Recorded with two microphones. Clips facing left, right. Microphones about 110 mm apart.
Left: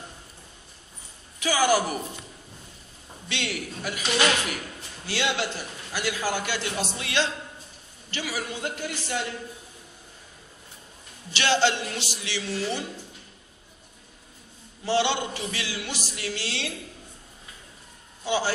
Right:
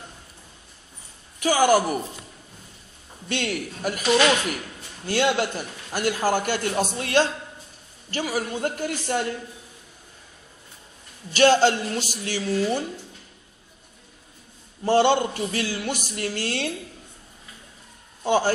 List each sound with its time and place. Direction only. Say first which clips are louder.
1.4 s a man's voice: right 4 dB; 50° right (ahead or behind)
3.3 s a man's voice: right 5 dB; 45° right (ahead or behind)
11.3 s a man's voice: right 6 dB; 45° right (ahead or behind)
14.9 s a man's voice: right 6 dB; 45° right (ahead or behind)
18.2 s a man's voice: right 5 dB; 50° right (ahead or behind)